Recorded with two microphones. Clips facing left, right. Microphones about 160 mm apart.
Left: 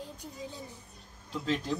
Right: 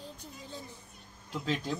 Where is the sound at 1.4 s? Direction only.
5° right (ahead or behind).